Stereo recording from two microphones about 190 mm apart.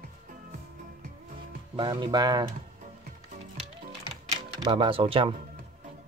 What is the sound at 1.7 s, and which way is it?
Speech, 25° right (ahead or behind).